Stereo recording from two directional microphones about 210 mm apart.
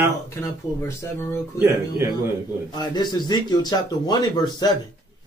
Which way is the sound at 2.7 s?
20° left (ahead or behind).